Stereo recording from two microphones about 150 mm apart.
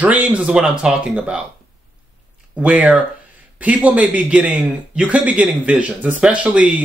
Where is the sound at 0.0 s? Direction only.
10° right (ahead or behind).